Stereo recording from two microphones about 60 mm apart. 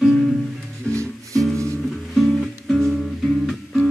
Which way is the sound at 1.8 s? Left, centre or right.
Centre.